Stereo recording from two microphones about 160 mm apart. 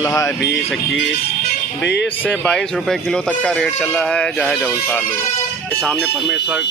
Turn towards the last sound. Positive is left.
turn(degrees=-5)  # may be behind; listen again after turning